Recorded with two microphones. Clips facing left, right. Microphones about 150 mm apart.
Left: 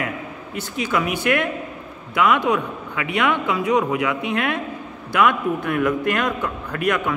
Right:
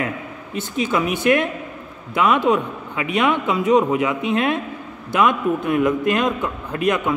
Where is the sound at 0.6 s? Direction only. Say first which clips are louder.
Right 2 dB; 25° right (ahead or behind).